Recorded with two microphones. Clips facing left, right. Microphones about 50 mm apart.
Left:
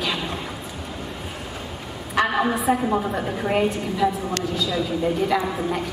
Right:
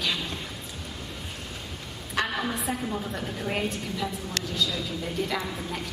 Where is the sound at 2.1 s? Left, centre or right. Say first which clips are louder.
Left 8 dB; left.